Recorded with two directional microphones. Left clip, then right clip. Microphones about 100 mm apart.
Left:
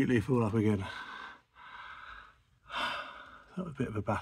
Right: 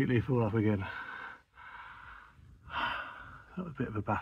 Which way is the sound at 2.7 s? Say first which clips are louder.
Even; 35° left (ahead or behind).